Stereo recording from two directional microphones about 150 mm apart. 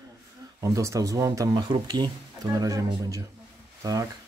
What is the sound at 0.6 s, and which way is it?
Speech, 20° right (ahead or behind).